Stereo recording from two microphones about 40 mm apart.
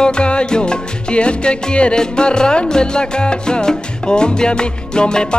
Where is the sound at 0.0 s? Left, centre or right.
Left.